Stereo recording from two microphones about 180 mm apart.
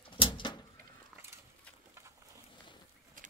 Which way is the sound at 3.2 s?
50° right (ahead or behind).